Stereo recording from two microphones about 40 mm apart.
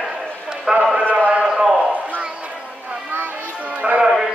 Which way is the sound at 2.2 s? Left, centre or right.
Right.